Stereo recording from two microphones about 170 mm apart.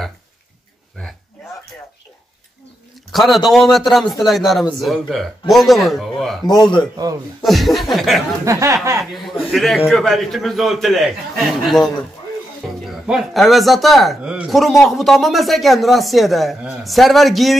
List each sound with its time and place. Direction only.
3.1 s a sound: centre (ahead or behind)
3.4 s speech: centre (ahead or behind)
6.6 s speech: 25° left (ahead or behind)
7.4 s speech: centre (ahead or behind)
8.5 s a sound: 20° right (ahead or behind)
9.0 s speech: centre (ahead or behind)